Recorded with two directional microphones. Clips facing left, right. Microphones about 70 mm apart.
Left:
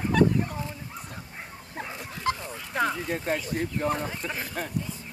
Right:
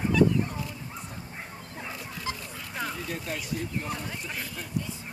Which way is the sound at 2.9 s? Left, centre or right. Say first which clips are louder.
Left 5 dB; left.